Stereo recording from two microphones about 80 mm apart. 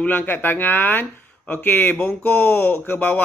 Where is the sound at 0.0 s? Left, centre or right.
Left.